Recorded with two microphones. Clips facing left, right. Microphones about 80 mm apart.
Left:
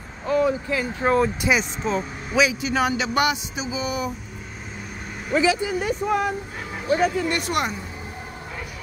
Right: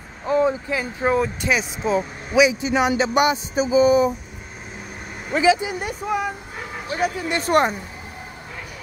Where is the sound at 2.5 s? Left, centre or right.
Right.